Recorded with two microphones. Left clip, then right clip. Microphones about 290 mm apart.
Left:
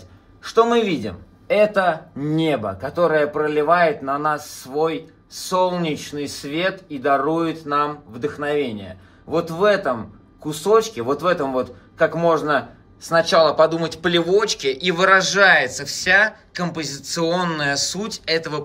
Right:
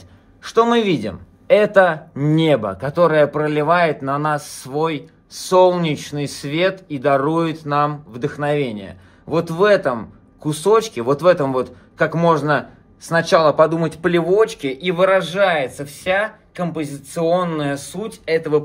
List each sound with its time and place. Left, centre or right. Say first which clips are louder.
0.4 s a man's voice: right 1 dB; right; by 18.6 s centre